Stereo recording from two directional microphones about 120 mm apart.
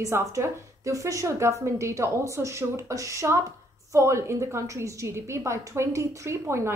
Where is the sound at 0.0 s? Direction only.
25° right (ahead or behind).